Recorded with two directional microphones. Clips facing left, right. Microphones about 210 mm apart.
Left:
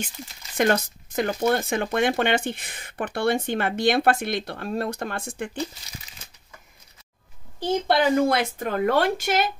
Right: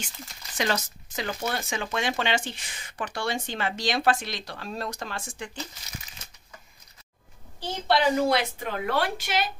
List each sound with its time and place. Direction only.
0.6 s speech: 55° left (ahead or behind)
7.9 s a woman's voice: 50° left (ahead or behind)